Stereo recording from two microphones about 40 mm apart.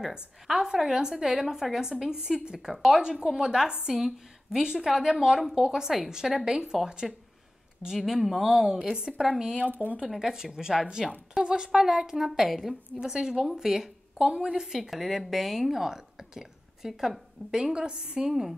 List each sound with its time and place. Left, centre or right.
0.5 s speech: centre
2.7 s a woman's voice: centre
3.0 s a woman's voice: right
7.0 s a woman's voice: centre
9.7 s speech: right
10.1 s speech: centre
13.0 s a woman's voice: centre
18.3 s speech: centre